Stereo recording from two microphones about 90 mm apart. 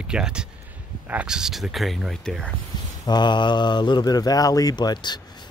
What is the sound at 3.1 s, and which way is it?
A man's voice, 55° left (ahead or behind).